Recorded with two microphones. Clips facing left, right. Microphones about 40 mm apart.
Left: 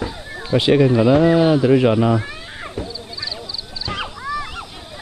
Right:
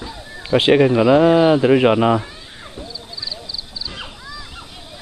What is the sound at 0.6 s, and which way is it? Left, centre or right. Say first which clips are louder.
Speech: right 1 dB; right.